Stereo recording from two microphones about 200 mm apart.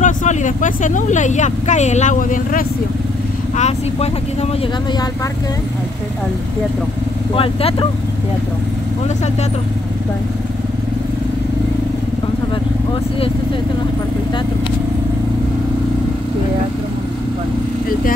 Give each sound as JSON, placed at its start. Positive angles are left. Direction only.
{"t": 0.0, "sound": "speech", "side_deg": 40}
{"t": 7.3, "sound": "speech", "side_deg": 25}